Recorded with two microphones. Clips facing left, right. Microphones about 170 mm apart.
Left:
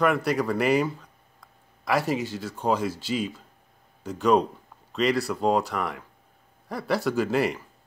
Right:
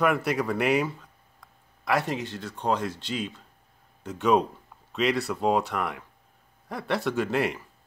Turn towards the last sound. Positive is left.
turn(degrees=0)  # may be behind; listen again after turning